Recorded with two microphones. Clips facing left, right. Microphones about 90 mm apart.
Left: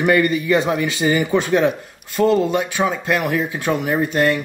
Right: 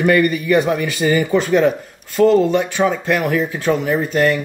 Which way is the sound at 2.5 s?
10° left (ahead or behind).